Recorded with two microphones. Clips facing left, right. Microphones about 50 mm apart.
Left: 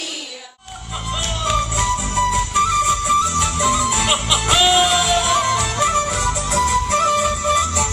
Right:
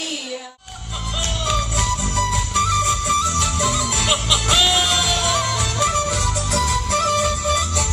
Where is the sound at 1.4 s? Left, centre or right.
Centre.